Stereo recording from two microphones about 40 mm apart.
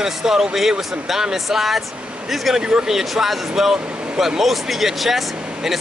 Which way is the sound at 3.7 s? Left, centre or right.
Right.